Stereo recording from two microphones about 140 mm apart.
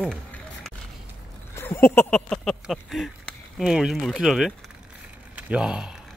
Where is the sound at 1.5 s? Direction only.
15° left (ahead or behind).